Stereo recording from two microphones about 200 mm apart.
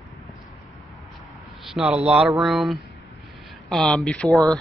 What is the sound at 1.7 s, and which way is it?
Speech, 5° right (ahead or behind).